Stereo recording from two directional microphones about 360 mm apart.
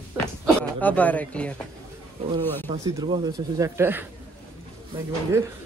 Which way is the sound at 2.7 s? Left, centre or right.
Centre.